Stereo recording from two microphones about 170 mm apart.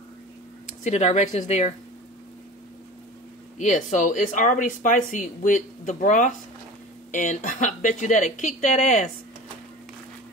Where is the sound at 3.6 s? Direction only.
45° left (ahead or behind).